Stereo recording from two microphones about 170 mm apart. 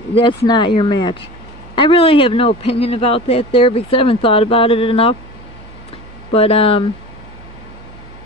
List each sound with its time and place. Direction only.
0.1 s speech: 30° left (ahead or behind)
6.3 s speech: 35° left (ahead or behind)